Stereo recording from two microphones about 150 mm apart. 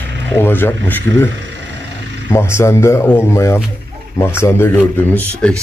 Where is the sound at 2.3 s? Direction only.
15° left (ahead or behind).